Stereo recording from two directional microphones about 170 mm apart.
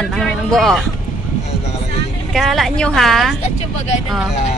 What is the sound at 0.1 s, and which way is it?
Speech, centre (ahead or behind).